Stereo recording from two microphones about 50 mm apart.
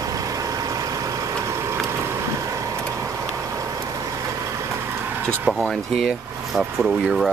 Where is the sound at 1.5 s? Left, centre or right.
Right.